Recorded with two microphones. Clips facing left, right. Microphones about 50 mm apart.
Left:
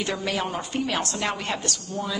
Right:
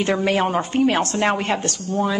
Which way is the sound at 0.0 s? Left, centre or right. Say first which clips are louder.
Right 8 dB; right.